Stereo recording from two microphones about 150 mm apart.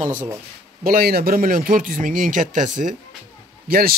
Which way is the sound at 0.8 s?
90° right.